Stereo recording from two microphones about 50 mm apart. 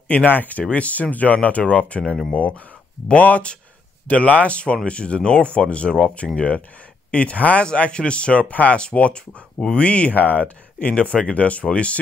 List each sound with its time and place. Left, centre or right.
0.1 s speech: left